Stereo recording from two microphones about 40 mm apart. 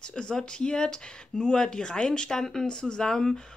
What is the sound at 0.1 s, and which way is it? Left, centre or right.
Speech, centre.